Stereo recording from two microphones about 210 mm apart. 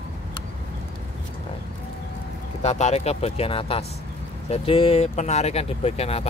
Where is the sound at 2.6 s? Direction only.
30° left (ahead or behind).